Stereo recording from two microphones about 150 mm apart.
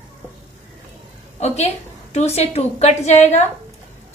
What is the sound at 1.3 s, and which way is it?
A woman's voice, 45° left (ahead or behind).